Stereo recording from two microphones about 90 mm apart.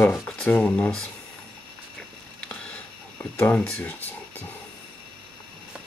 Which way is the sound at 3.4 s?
15° left (ahead or behind).